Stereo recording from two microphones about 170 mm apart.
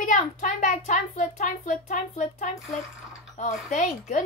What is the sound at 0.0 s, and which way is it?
A child's voice, 45° left (ahead or behind).